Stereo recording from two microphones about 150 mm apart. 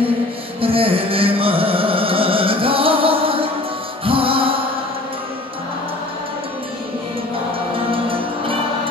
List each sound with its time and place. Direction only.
0.6 s music: 40° right (ahead or behind)
7.7 s music: 35° right (ahead or behind)